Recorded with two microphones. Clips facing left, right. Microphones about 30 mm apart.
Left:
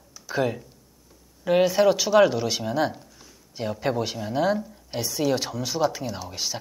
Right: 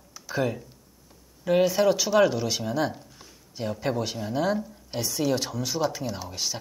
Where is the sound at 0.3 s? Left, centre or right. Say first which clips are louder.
Left 2 dB; centre.